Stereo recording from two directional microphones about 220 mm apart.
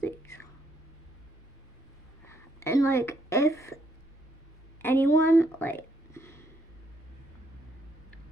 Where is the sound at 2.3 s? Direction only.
10° left (ahead or behind).